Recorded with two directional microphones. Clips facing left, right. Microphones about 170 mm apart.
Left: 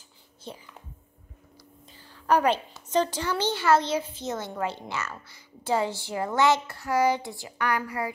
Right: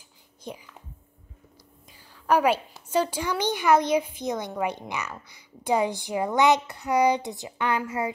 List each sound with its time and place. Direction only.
0.5 s a woman's voice: 15° right (ahead or behind)
2.2 s a woman's voice: 10° right (ahead or behind)